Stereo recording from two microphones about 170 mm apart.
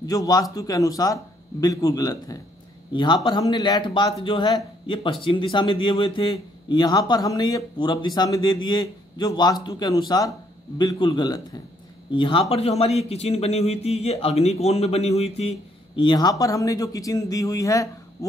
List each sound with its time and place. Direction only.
0.0 s a man's voice: 20° left (ahead or behind); by 15.5 s 35° left (ahead or behind)
16.0 s speech: 25° left (ahead or behind)